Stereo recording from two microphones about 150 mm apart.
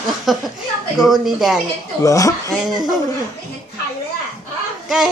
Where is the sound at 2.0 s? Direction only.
20° left (ahead or behind).